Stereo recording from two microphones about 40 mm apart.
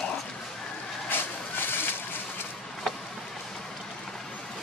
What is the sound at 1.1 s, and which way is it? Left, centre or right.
Vehicle, left.